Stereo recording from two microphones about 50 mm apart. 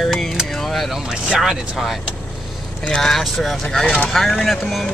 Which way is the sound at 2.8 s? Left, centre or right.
Centre.